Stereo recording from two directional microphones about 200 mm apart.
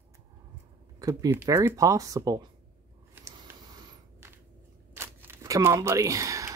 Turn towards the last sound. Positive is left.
turn(degrees=-15)  # may be behind; listen again after turning